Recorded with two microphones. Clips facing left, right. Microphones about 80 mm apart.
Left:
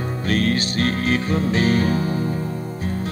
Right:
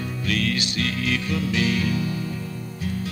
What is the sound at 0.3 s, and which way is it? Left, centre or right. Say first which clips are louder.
Music: left 5 dB; left.